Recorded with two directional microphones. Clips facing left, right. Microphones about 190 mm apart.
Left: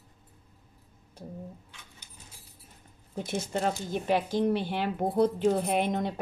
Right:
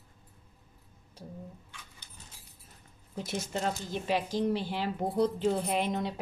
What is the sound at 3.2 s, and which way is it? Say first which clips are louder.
Speech: left 3 dB; 50° left (ahead or behind).